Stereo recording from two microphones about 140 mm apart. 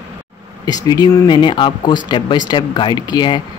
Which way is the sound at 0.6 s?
30° left (ahead or behind).